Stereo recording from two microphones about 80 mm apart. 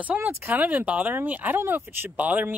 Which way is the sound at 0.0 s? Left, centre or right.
Centre.